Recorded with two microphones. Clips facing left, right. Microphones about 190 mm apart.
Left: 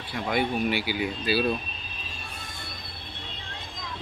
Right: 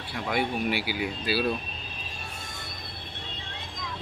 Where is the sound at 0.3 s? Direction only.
5° right (ahead or behind).